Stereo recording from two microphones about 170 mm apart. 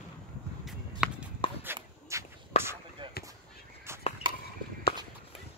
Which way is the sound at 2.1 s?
15° right (ahead or behind).